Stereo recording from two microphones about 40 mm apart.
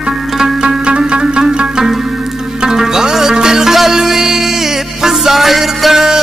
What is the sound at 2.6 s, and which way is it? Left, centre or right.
Music, centre.